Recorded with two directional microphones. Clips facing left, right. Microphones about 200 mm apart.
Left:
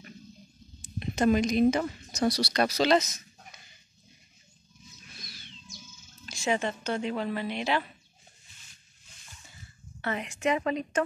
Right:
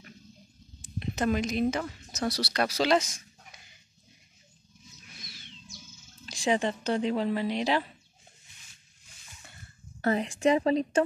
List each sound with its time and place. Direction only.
0.9 s speech: centre (ahead or behind)
6.3 s speech: 35° right (ahead or behind)
10.0 s speech: 35° right (ahead or behind)